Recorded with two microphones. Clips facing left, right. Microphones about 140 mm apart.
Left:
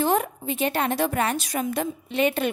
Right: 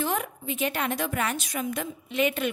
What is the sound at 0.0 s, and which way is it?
A woman's voice, 35° left (ahead or behind).